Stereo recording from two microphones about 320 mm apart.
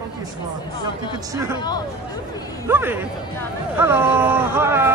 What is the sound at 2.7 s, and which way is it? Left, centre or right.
Speech, centre.